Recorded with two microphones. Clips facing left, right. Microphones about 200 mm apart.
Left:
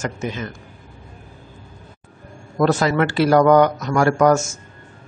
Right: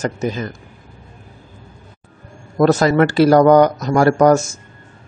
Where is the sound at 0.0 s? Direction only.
35° right (ahead or behind).